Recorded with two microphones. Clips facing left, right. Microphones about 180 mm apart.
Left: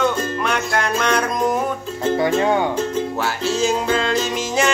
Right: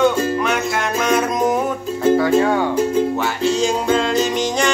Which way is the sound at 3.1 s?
Centre (ahead or behind).